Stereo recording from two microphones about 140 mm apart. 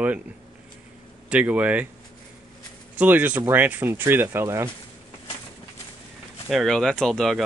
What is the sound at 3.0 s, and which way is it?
Speech, 10° right (ahead or behind).